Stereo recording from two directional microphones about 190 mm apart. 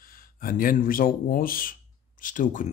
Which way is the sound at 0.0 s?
50° left (ahead or behind).